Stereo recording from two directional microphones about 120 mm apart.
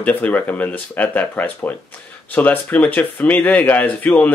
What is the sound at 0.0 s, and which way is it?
Speech, 15° left (ahead or behind).